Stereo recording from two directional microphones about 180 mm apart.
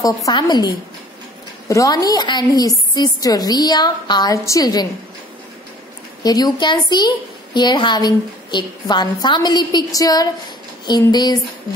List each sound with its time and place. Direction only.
0.0 s a woman's voice: 20° left (ahead or behind)
6.2 s a woman's voice: 20° left (ahead or behind)